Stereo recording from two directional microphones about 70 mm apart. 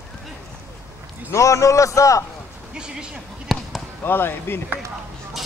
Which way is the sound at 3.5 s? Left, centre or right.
Centre.